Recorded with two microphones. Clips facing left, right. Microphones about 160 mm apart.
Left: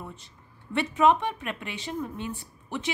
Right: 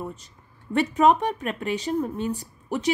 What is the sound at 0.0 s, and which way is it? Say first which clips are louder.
A woman's voice: right 7 dB; 40° right (ahead or behind).